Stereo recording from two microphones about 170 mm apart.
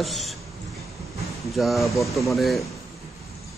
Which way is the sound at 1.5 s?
Centre (ahead or behind).